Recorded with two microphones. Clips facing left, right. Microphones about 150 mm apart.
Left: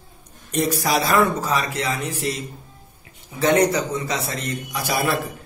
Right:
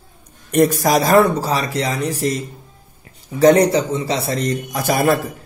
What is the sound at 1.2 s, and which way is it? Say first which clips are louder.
A man's voice: right 3 dB; 35° right (ahead or behind).